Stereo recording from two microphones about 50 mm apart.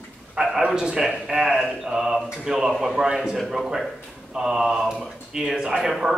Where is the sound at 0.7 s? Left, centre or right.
Centre.